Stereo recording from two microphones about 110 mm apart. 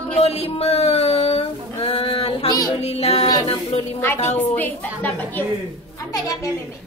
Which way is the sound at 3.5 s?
65° left (ahead or behind).